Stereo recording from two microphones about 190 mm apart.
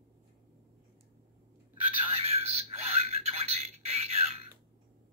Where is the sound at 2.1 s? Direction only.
30° right (ahead or behind).